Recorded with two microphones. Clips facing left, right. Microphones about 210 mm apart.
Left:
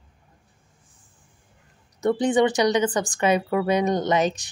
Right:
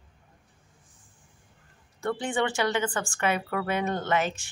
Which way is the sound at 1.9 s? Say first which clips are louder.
Left 8 dB; 20° left (ahead or behind).